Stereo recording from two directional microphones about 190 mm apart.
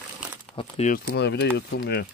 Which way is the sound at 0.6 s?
40° left (ahead or behind).